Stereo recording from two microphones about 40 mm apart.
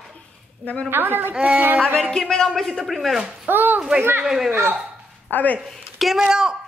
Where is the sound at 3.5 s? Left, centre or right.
Right.